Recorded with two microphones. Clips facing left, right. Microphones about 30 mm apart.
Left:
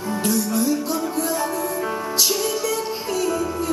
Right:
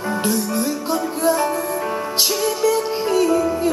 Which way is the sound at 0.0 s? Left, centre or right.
Right.